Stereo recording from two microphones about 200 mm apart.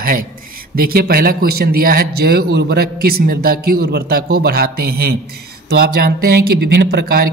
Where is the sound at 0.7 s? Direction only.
50° right (ahead or behind).